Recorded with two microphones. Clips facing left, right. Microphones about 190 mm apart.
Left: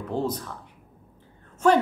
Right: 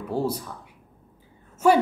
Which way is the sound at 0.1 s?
10° right (ahead or behind).